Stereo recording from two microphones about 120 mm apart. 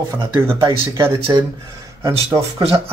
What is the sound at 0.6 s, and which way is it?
Speech, 25° right (ahead or behind).